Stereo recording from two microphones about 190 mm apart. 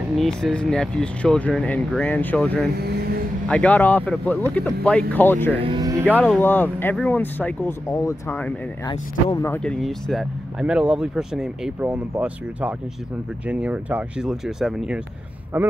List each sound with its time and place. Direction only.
0.2 s speech: 5° left (ahead or behind)
5.6 s speech: 25° right (ahead or behind)
6.4 s speech: 10° left (ahead or behind)
8.8 s speech: 20° left (ahead or behind)
9.5 s speech: 5° left (ahead or behind)